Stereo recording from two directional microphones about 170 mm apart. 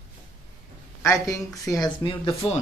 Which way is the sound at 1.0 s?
15° left (ahead or behind).